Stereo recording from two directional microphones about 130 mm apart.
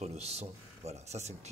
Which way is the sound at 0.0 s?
55° right (ahead or behind).